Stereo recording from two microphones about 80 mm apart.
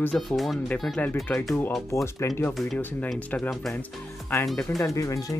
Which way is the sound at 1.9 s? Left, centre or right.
Left.